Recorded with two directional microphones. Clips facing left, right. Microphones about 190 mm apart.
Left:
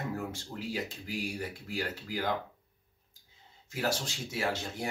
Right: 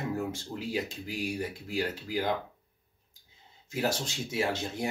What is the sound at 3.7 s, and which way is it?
Speech, 20° right (ahead or behind).